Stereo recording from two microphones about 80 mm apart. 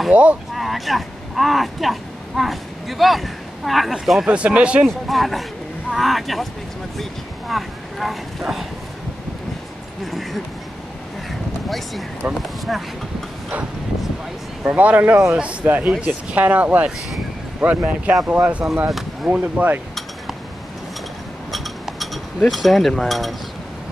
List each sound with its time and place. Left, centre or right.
0.1 s speech: centre
0.6 s speech: centre
4.8 s speech: centre
12.4 s speech: centre
14.6 s speech: centre
15.6 s speech: right
21.5 s chink: centre